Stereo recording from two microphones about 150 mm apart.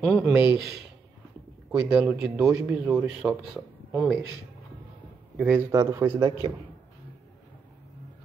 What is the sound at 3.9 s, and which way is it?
Speech, 5° right (ahead or behind).